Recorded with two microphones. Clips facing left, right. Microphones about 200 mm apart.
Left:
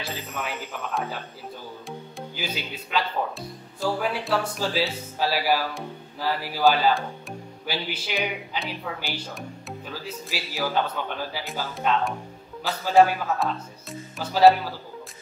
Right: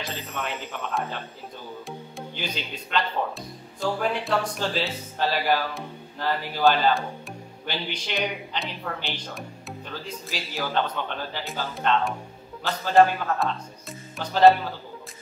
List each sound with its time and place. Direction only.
0.1 s speech: centre (ahead or behind)